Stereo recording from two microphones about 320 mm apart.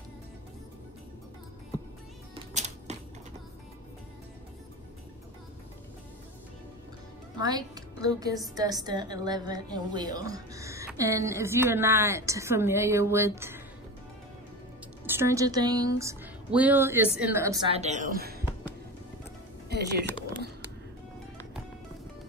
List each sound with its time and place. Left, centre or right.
2.3 s music: right
7.3 s a woman's voice: centre
15.0 s a woman's voice: centre; by 18.4 s right
19.7 s speech: right